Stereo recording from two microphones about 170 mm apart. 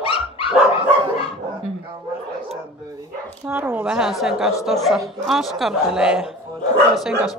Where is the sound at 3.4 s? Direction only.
15° right (ahead or behind).